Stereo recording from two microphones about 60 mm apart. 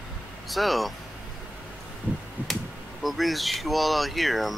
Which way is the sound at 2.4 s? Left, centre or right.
Right.